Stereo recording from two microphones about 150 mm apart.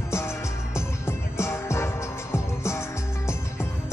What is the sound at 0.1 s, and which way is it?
Music, 20° left (ahead or behind).